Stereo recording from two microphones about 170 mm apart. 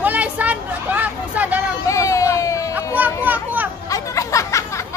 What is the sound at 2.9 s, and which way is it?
Children playing, 10° right (ahead or behind).